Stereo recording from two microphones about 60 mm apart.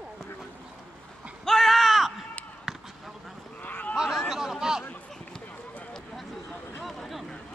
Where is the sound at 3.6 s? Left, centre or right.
Left.